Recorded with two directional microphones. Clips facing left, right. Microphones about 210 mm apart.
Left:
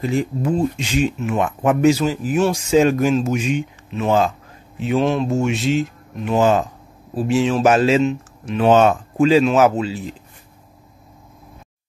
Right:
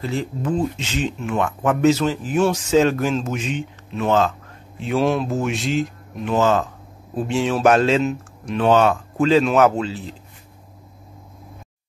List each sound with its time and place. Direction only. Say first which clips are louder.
0.0 s speech: left 4 dB; 15° left (ahead or behind)
6.3 s speech: left 2 dB; 15° left (ahead or behind)
8.6 s speech: left 3 dB; 20° left (ahead or behind)
9.2 s speech: left 2 dB; 5° left (ahead or behind)